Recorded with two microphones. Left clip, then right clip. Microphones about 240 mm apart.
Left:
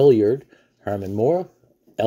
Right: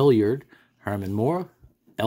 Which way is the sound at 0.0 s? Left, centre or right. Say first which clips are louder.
Left 5 dB; centre.